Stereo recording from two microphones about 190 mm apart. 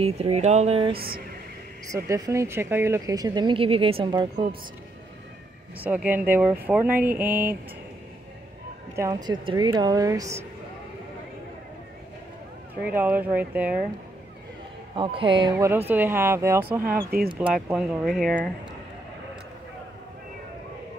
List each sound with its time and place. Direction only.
0.0 s speech: 35° right (ahead or behind)
0.9 s speech: 50° right (ahead or behind)
2.0 s speech: 15° right (ahead or behind)
5.8 s speech: 10° right (ahead or behind)
8.9 s speech: 20° right (ahead or behind)
12.8 s speech: 10° right (ahead or behind)
15.0 s speech: 25° right (ahead or behind)
15.5 s speech: 10° right (ahead or behind)
16.8 s speech: 50° right (ahead or behind)
17.6 s speech: centre (ahead or behind)